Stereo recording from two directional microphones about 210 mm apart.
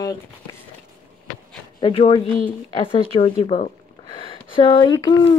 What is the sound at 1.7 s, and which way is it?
Speech, 25° left (ahead or behind).